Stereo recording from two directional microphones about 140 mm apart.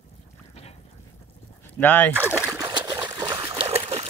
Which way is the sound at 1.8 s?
15° left (ahead or behind).